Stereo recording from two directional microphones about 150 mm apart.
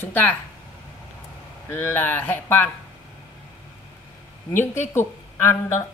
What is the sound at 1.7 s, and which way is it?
A woman's voice, 15° left (ahead or behind).